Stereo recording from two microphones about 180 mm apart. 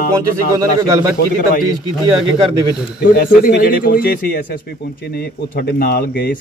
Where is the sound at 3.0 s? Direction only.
55° left (ahead or behind).